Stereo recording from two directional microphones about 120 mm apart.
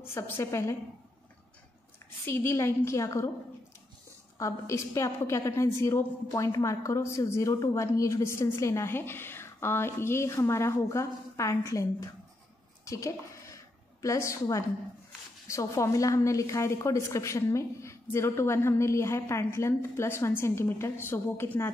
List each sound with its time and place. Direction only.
0.1 s a woman's voice: 20° left (ahead or behind)
2.2 s a woman's voice: 20° left (ahead or behind)
4.4 s a woman's voice: 25° left (ahead or behind)
12.8 s a sound: 25° left (ahead or behind)
14.0 s a woman's voice: 25° left (ahead or behind)